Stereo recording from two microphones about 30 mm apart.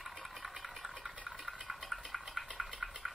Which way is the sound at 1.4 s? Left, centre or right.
Centre.